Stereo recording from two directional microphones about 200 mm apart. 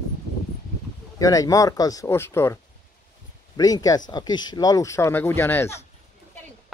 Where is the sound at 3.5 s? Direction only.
20° left (ahead or behind).